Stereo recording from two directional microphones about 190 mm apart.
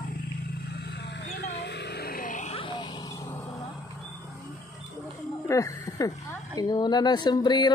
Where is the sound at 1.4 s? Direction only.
60° left (ahead or behind); by 2.6 s 40° left (ahead or behind).